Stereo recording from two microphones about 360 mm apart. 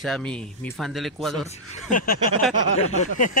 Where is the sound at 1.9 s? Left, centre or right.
Left.